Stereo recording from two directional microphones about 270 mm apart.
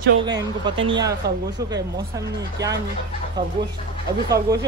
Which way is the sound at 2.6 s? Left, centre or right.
Right.